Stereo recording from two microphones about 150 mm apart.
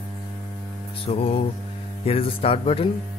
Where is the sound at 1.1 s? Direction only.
40° left (ahead or behind).